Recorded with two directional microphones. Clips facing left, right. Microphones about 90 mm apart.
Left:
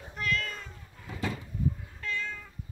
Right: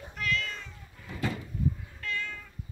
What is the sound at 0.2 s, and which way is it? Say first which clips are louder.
Cat: even; 45° left (ahead or behind).